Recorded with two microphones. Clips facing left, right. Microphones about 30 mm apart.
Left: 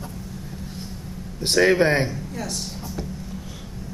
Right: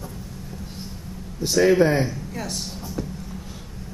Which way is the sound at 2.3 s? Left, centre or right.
Centre.